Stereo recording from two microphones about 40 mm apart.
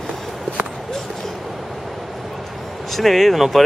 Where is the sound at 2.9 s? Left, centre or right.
Centre.